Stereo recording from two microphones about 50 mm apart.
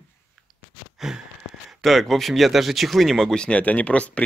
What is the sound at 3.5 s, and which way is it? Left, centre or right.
Speech, left.